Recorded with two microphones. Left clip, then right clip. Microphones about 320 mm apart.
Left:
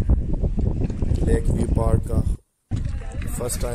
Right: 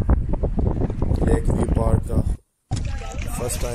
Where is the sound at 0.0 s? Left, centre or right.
Right.